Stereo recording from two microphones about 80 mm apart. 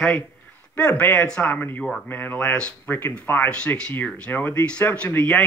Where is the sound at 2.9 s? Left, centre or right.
Left.